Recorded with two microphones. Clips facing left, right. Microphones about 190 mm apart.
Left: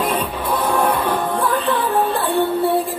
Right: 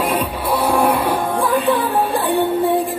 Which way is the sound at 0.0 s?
10° right (ahead or behind).